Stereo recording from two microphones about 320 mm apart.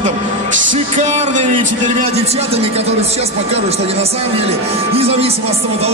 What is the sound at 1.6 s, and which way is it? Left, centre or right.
Speech, right.